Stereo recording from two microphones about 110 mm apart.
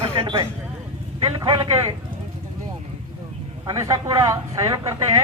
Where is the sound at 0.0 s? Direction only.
60° right (ahead or behind).